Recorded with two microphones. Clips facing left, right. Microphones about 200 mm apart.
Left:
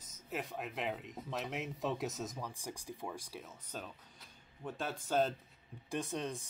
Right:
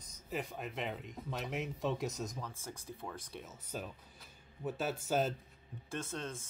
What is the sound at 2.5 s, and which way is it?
Speech, 15° left (ahead or behind).